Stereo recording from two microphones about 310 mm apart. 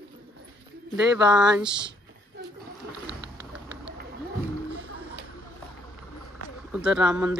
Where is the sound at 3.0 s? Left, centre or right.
Right.